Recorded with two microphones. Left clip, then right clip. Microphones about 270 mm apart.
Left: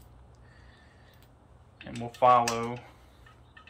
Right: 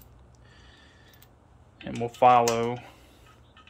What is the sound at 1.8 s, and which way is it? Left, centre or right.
Speech, right.